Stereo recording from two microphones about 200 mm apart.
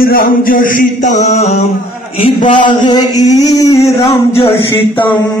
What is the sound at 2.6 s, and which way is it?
Male singing, 25° left (ahead or behind).